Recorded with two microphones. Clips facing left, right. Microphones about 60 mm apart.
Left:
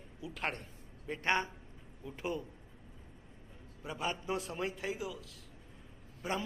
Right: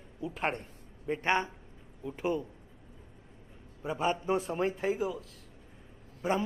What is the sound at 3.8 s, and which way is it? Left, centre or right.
A man's voice, right.